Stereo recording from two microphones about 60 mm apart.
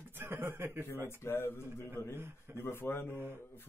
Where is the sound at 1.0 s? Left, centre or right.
Left.